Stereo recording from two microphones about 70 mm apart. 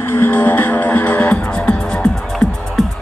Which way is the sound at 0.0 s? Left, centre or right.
Left.